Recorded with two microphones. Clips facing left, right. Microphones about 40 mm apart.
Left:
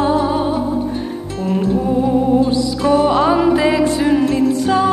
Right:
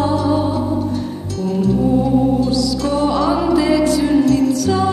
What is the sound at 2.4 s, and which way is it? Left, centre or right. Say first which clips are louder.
Music: left 2 dB; left.